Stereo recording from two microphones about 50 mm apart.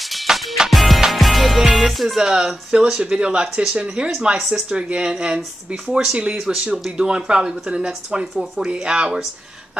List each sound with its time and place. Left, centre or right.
0.0 s music: centre
2.2 s speech: centre